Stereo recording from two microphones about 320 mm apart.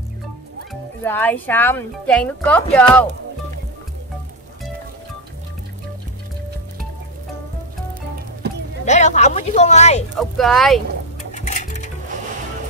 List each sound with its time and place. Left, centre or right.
1.0 s a woman's voice: centre
8.8 s speech: left
10.1 s a woman's voice: centre
11.3 s music: left